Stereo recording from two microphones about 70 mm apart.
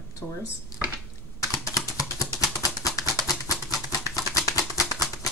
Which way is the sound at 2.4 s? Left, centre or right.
Left.